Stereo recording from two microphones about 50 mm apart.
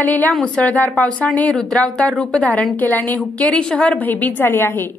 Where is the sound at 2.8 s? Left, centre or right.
Left.